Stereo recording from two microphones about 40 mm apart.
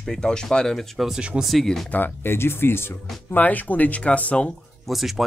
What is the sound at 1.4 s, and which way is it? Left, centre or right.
Speech, centre.